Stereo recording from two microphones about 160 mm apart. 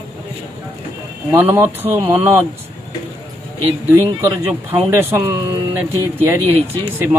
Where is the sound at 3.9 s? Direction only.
15° right (ahead or behind).